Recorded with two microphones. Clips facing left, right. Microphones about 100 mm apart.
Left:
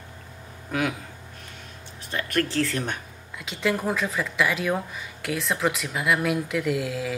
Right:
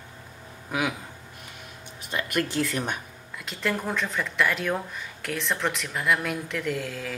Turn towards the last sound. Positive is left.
turn(degrees=5)  # may be behind; listen again after turning